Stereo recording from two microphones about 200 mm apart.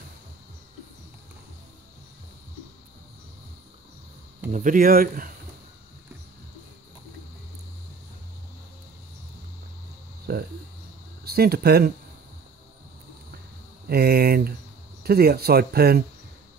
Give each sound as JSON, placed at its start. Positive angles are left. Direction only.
{"t": 4.5, "sound": "speech", "side_deg": -40}
{"t": 10.3, "sound": "a sound", "side_deg": -50}
{"t": 11.2, "sound": "speech", "side_deg": -50}
{"t": 13.8, "sound": "speech", "side_deg": -50}